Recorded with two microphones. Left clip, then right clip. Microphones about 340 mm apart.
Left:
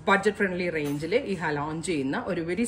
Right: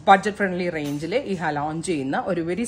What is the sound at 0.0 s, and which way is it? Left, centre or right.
A woman's voice, right.